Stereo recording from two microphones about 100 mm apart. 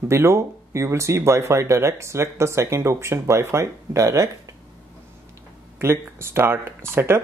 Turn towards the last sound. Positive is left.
turn(degrees=-25)  # may be behind; listen again after turning